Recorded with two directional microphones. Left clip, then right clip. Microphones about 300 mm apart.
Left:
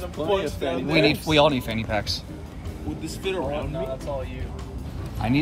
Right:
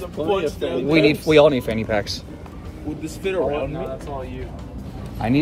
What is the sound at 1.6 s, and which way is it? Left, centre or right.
Speech, centre.